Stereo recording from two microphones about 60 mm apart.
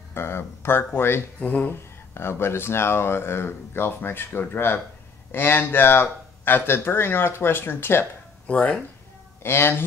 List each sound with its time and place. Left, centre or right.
0.1 s speech: left
1.4 s speech: left
1.7 s speech: left
8.5 s speech: left
9.4 s speech: left